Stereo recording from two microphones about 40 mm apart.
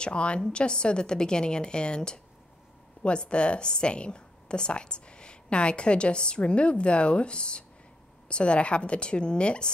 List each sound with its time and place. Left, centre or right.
0.0 s a woman's voice: left